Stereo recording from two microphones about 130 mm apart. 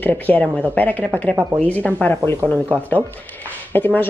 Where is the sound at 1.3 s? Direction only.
15° right (ahead or behind).